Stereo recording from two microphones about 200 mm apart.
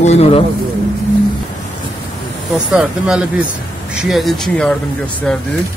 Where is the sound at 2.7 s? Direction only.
5° right (ahead or behind).